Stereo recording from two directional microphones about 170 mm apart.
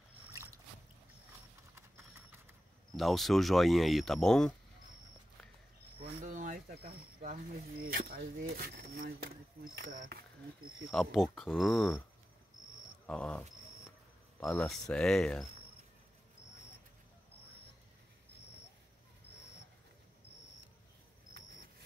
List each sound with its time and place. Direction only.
3.0 s speech: centre (ahead or behind)
6.2 s cricket: 45° right (ahead or behind)
7.2 s speech: 50° right (ahead or behind)
10.9 s speech: centre (ahead or behind)
13.0 s speech: 5° left (ahead or behind)
14.4 s speech: centre (ahead or behind)